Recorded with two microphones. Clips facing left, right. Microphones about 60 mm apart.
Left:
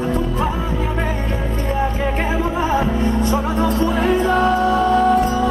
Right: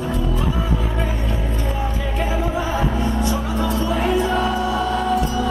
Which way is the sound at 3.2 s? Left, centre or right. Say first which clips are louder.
Left 4 dB; left.